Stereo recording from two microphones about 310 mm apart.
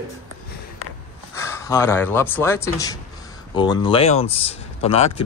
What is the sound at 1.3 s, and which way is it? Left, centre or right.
Speech, centre.